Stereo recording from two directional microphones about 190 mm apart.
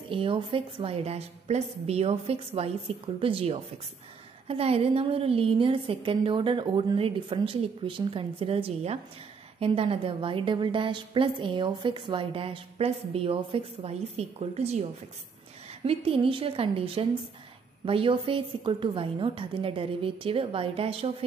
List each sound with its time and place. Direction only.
0.1 s a woman's voice: 30° right (ahead or behind)